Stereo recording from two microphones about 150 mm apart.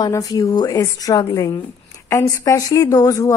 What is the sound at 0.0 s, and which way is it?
A woman's voice, 25° left (ahead or behind).